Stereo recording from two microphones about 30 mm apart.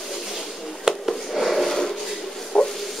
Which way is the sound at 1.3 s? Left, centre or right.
Centre.